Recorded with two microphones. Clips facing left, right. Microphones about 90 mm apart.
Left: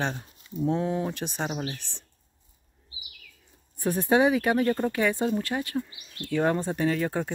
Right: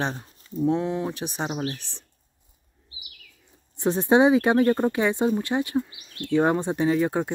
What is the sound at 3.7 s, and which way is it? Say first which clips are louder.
Speech: right 4 dB; 20° right (ahead or behind).